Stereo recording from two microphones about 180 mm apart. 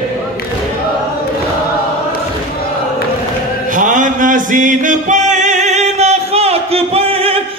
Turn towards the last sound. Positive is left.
turn(degrees=-30)  # may be behind; listen again after turning